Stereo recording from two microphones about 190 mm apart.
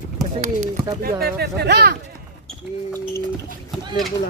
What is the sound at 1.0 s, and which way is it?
Speech, 55° right (ahead or behind).